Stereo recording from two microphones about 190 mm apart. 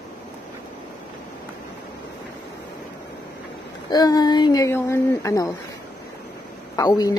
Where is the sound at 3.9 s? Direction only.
20° left (ahead or behind).